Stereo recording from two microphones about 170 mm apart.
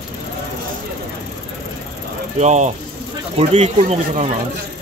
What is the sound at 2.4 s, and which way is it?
Speech, 45° right (ahead or behind).